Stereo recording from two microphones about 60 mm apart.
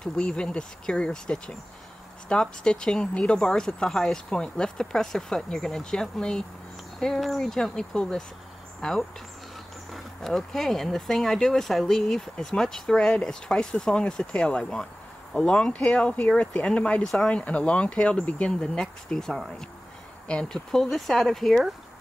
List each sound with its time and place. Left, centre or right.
0.0 s speech: centre
18.5 s speech: centre